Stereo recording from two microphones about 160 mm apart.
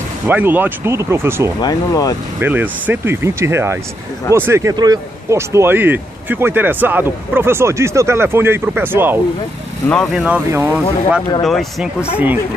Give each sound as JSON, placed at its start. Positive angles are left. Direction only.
{"t": 0.3, "sound": "speech", "side_deg": -10}
{"t": 1.6, "sound": "speech", "side_deg": 25}
{"t": 2.4, "sound": "speech", "side_deg": -10}
{"t": 11.4, "sound": "speech", "side_deg": 0}